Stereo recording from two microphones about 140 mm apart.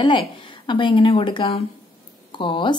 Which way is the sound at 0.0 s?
35° left (ahead or behind).